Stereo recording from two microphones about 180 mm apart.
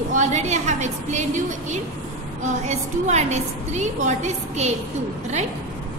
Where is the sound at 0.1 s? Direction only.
40° right (ahead or behind).